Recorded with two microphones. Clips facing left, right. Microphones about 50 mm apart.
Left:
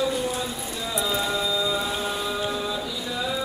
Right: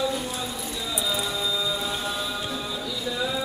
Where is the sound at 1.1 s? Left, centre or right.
Left.